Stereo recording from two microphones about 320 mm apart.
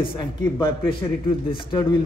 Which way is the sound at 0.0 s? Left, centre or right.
Centre.